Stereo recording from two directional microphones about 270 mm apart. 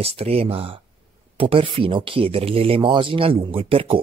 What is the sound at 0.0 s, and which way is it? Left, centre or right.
Speech, right.